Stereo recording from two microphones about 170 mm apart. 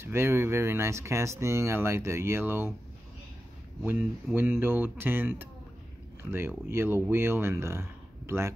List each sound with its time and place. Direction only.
0.0 s speech: 15° right (ahead or behind)
3.8 s speech: 15° right (ahead or behind)